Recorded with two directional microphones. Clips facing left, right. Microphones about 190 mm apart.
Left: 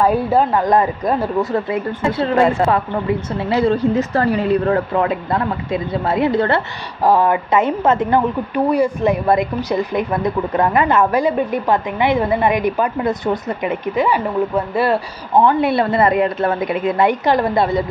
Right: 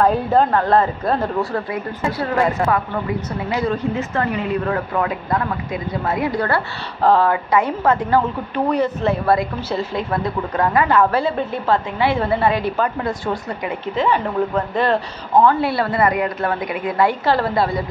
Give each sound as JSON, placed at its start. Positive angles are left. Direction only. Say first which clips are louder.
{"t": 0.0, "sound": "a woman's voice", "louder": "left 1 dB", "side_deg": 10}
{"t": 7.0, "sound": "a woman's voice", "louder": "left 1 dB", "side_deg": 15}
{"t": 8.6, "sound": "speech", "louder": "left 3 dB", "side_deg": 10}
{"t": 14.0, "sound": "speech", "louder": "right 1 dB", "side_deg": 10}
{"t": 15.4, "sound": "a woman's voice", "louder": "left 2 dB", "side_deg": 20}